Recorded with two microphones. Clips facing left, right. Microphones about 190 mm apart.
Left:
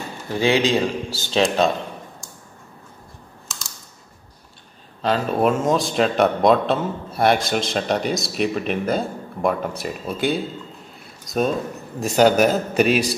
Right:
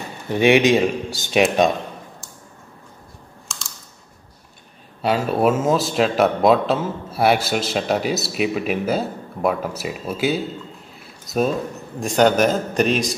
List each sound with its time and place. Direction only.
0.3 s speech: 20° right (ahead or behind)
3.4 s computer keyboard: centre (ahead or behind)
5.0 s a man's voice: 10° right (ahead or behind)